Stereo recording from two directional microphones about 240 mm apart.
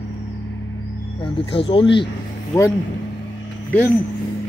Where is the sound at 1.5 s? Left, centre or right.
Left.